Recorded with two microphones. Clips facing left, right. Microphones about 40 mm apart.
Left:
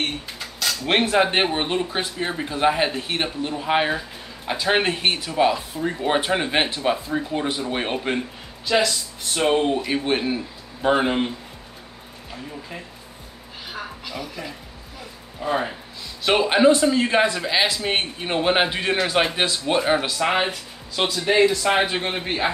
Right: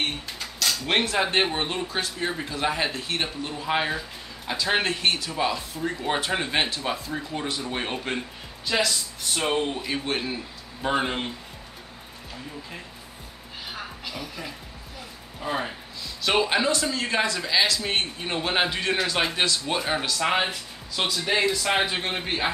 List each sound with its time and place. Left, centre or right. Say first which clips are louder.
0.0 s a man's voice: left 2 dB; centre
13.7 s a sound: left 5 dB; centre
15.4 s a man's voice: left 5 dB; centre
16.2 s a man's voice: left 5 dB; centre